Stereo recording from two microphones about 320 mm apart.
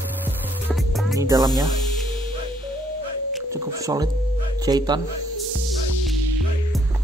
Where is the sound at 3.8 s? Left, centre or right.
Centre.